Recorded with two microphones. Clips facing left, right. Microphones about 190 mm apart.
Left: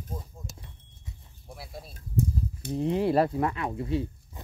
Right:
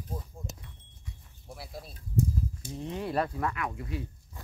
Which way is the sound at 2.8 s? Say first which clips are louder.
Left 8 dB; 30° left (ahead or behind).